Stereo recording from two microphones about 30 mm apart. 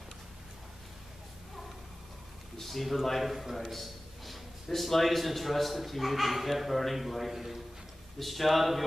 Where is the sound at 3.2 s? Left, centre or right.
Centre.